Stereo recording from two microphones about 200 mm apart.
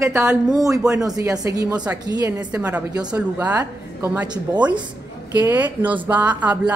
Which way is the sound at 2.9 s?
20° right (ahead or behind).